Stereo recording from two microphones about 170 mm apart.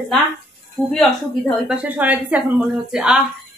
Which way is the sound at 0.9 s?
5° left (ahead or behind).